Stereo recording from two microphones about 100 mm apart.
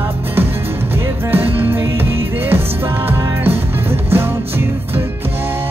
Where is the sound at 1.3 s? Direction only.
20° right (ahead or behind).